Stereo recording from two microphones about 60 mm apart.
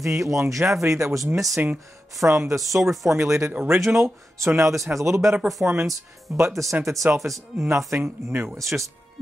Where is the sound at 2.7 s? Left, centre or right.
Right.